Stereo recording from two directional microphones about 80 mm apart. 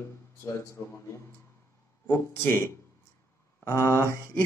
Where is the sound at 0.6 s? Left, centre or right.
Left.